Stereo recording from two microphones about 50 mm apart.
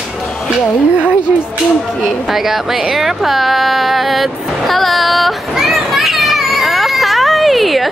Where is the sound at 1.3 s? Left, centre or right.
Right.